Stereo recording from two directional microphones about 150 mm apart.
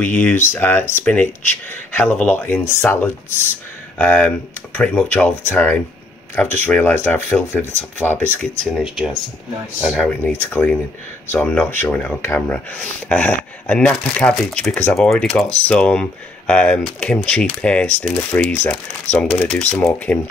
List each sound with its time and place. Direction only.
0.0 s speech: 10° left (ahead or behind)
8.6 s speech: centre (ahead or behind)